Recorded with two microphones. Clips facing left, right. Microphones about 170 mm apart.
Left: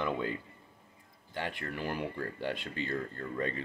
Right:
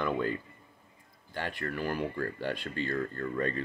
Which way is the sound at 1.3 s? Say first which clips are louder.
Right 2 dB; 15° left (ahead or behind).